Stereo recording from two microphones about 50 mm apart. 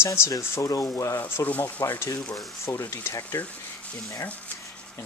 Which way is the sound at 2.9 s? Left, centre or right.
Left.